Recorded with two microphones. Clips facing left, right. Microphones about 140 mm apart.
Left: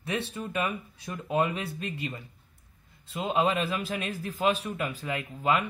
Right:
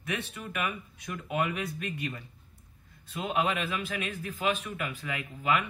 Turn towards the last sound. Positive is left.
turn(degrees=35)  # may be behind; listen again after turning